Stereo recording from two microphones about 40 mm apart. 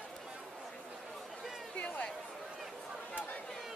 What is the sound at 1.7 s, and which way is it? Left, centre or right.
Chatter, left.